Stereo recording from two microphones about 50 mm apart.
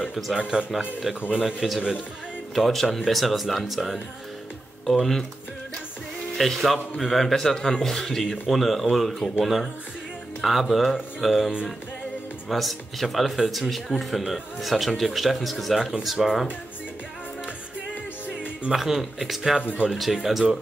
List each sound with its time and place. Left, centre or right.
0.4 s speech: centre
1.1 s speech: centre
6.3 s speech: centre
18.7 s speech: centre